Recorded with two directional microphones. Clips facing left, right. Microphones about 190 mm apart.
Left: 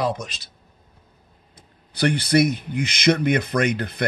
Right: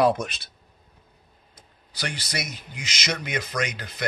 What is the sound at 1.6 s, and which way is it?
Speech, 60° left (ahead or behind).